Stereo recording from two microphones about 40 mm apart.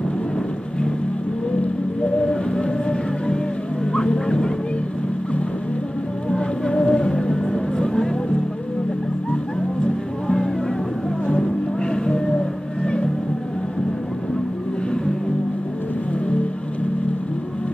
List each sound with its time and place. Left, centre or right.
2.0 s music: left
6.3 s music: left
10.2 s music: centre